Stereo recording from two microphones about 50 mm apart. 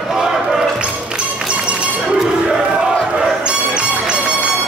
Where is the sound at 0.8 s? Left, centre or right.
Centre.